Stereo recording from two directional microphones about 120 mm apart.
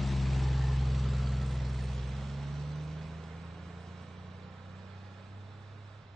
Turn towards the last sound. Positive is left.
turn(degrees=0)  # may be behind; listen again after turning